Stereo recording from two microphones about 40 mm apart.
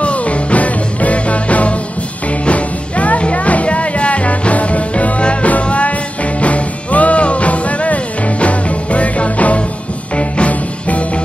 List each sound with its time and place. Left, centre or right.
0.0 s music: left